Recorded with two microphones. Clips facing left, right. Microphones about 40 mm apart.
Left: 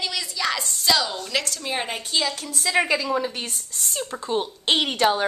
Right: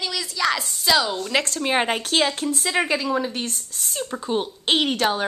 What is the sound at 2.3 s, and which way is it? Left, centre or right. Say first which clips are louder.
Speech: right 6 dB; right.